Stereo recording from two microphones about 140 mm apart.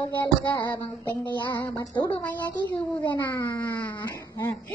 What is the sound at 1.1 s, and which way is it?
Speech, 25° left (ahead or behind).